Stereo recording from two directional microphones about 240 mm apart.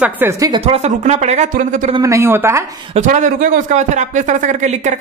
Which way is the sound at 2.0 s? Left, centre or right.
Centre.